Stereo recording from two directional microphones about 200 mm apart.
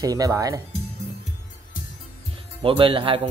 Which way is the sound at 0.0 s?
20° right (ahead or behind).